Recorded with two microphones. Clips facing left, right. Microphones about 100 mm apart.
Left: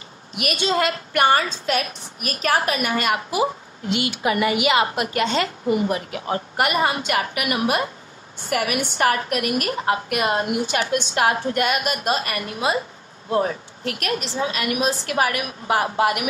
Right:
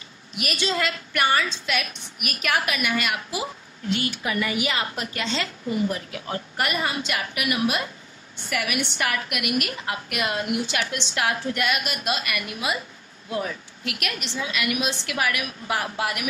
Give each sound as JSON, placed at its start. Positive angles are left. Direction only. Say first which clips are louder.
{"t": 0.4, "sound": "a woman's voice", "louder": "left 5 dB", "side_deg": 50}
{"t": 4.4, "sound": "a woman's voice", "louder": "left 7 dB", "side_deg": 60}